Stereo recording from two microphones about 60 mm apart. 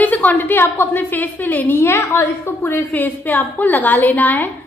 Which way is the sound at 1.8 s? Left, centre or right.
Left.